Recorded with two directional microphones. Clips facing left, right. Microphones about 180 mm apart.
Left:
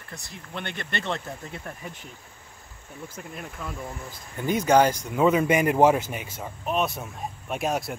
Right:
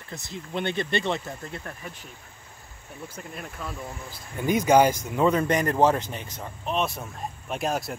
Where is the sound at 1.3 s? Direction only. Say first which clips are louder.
Even; 5° left (ahead or behind).